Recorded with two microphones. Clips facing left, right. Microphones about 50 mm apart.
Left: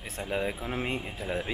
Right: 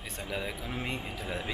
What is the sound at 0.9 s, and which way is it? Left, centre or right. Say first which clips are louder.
Speech: left 3 dB; centre.